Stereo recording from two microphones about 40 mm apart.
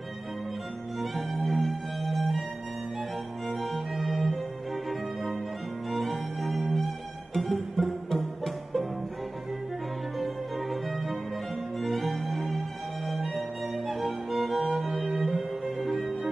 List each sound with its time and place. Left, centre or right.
0.9 s music: centre
3.4 s music: centre
10.1 s music: centre